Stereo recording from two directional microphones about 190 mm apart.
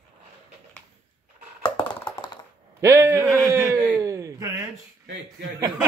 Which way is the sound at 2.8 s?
15° right (ahead or behind).